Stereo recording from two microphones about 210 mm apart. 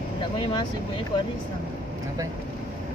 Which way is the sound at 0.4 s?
20° left (ahead or behind).